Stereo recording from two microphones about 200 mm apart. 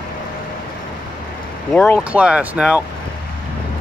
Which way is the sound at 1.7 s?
5° left (ahead or behind).